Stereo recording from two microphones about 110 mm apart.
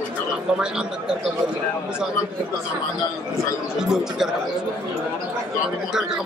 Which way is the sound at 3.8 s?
5° right (ahead or behind).